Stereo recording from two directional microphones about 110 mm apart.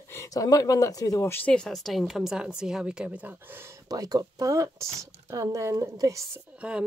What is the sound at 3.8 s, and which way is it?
Speech, 35° right (ahead or behind).